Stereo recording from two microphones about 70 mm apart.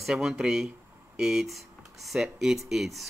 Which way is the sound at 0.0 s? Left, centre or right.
Centre.